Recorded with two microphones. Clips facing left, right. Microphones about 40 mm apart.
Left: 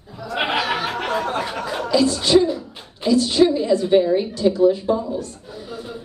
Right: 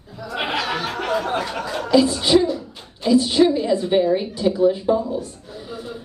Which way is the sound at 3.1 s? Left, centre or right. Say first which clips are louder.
Even; centre.